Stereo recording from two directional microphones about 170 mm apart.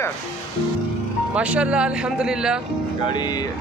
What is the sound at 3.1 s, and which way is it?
Speech, 25° left (ahead or behind).